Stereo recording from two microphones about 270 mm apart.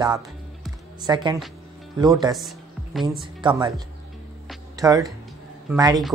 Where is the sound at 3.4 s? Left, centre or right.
Centre.